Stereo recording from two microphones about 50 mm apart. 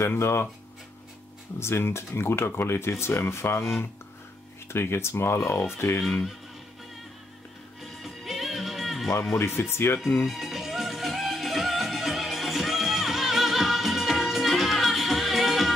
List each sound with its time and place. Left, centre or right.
0.2 s speech: left
1.6 s speech: left
5.8 s speech: left
7.8 s music: centre
9.4 s speech: left
10.2 s music: centre